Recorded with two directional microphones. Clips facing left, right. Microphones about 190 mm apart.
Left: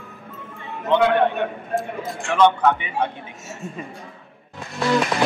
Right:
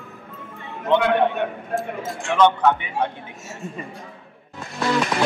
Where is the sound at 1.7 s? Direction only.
Centre (ahead or behind).